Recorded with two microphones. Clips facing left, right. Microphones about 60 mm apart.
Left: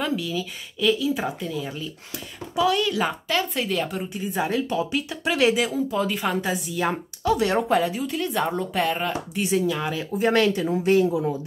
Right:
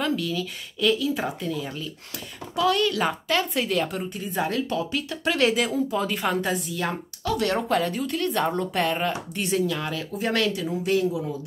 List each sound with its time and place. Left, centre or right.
0.0 s a woman's voice: centre
10.1 s speech: left
10.7 s speech: left
11.1 s speech: left